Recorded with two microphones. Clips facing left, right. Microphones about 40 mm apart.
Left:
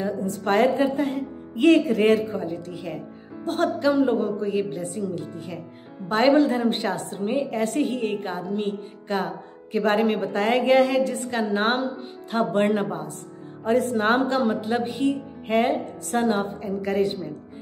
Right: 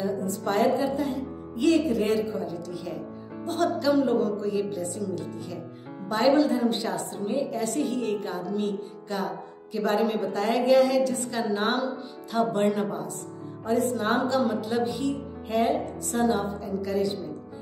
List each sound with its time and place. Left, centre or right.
0.0 s a woman's voice: left
3.9 s a woman's voice: left